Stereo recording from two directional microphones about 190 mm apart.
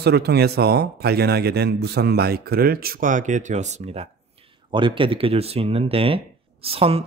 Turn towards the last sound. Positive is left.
turn(degrees=-30)  # may be behind; listen again after turning